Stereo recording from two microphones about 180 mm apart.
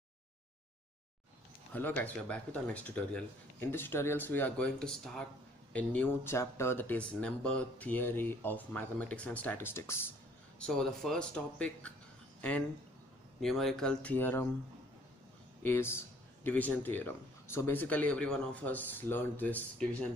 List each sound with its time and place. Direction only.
1.7 s speech: 10° left (ahead or behind)
10.6 s speech: 5° left (ahead or behind)
15.6 s speech: 10° left (ahead or behind)